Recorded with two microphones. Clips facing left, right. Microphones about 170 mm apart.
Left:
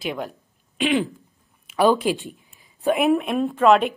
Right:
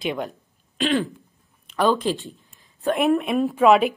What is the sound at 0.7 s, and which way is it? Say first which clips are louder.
Speech: left 1 dB; 15° left (ahead or behind).